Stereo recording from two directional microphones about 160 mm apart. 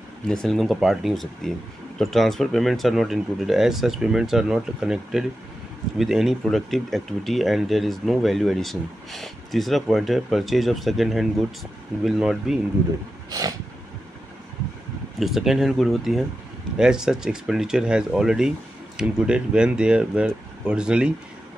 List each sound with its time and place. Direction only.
0.3 s speech: centre (ahead or behind)
13.3 s dog: 25° right (ahead or behind)
15.1 s speech: centre (ahead or behind)